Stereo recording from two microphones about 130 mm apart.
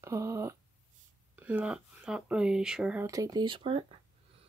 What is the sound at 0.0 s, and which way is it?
Speech, 20° right (ahead or behind).